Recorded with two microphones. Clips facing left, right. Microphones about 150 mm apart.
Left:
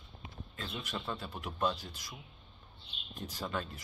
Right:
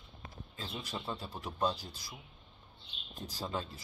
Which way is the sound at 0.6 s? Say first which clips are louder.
Left 1 dB; 30° right (ahead or behind).